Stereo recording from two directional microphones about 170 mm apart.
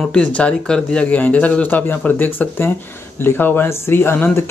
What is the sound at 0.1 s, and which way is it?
Speech, 5° left (ahead or behind).